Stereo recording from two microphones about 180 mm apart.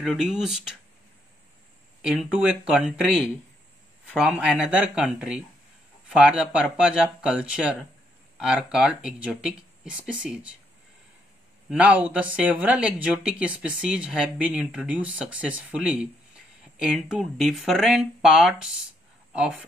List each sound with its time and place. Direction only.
0.0 s speech: centre (ahead or behind)
2.0 s speech: 5° right (ahead or behind)
4.2 s speech: 5° right (ahead or behind)
11.7 s speech: 10° right (ahead or behind)